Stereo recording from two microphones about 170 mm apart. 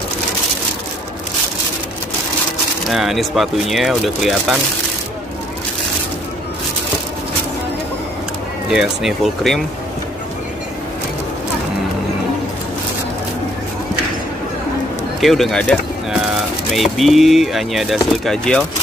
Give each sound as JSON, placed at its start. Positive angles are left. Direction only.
{"t": 2.9, "sound": "speech", "side_deg": 0}
{"t": 8.6, "sound": "speech", "side_deg": -5}
{"t": 15.1, "sound": "a sound", "side_deg": 0}
{"t": 16.7, "sound": "speech", "side_deg": 0}